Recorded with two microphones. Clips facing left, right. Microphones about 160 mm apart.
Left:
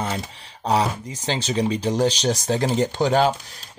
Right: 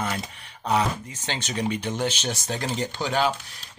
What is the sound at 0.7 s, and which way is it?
Speech, 35° left (ahead or behind).